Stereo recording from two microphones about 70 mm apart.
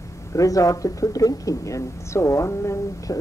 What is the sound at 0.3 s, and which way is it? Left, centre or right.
Speech, left.